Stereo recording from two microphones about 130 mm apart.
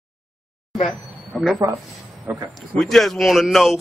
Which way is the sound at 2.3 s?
15° right (ahead or behind).